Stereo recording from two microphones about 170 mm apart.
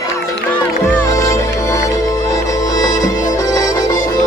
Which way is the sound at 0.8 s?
15° left (ahead or behind).